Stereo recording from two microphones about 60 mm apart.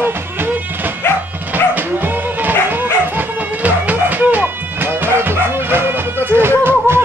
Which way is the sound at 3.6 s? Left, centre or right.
Right.